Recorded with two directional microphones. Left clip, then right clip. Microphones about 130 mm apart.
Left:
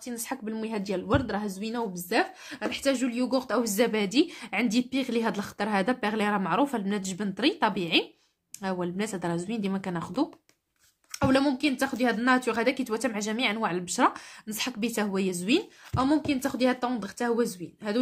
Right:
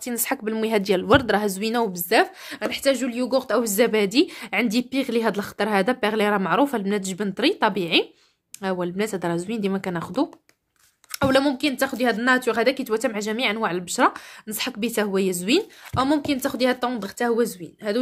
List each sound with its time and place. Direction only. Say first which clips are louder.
0.0 s speech: right 9 dB; 60° right (ahead or behind); by 2.0 s 85° right
2.0 s a woman's voice: right 6 dB; 45° right (ahead or behind); by 17.9 s 25° right (ahead or behind)